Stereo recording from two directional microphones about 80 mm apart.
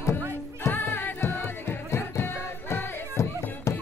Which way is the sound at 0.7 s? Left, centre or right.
Left.